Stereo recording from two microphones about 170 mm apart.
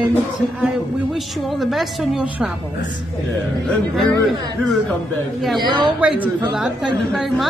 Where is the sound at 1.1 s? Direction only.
Centre (ahead or behind).